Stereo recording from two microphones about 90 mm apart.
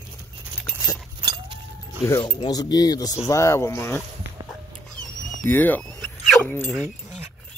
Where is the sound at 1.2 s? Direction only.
65° right (ahead or behind).